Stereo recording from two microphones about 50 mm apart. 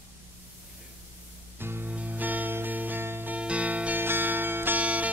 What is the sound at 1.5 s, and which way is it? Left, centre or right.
Music, right.